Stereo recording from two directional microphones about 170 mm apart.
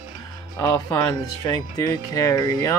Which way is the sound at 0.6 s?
20° left (ahead or behind).